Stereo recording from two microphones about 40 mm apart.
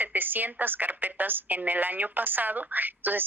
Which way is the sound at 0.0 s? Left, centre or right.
Right.